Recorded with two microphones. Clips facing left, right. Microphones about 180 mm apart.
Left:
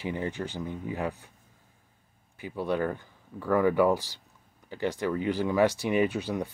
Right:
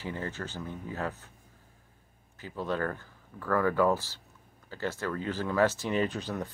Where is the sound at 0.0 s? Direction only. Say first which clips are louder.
Left 4 dB; 15° left (ahead or behind).